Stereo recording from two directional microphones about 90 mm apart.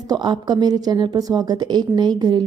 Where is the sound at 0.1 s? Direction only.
55° right (ahead or behind).